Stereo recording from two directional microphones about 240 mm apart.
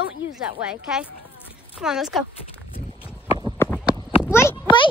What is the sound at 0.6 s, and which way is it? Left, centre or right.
A woman's voice, centre.